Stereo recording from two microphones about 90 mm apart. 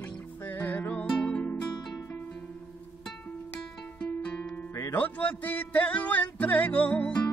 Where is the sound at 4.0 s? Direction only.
15° left (ahead or behind).